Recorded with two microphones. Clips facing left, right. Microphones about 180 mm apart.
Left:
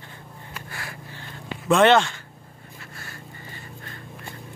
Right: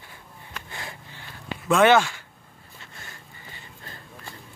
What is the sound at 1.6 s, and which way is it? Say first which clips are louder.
Speech: left 1 dB; centre (ahead or behind).